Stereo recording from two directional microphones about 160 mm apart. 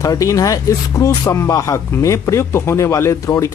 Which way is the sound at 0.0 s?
20° left (ahead or behind).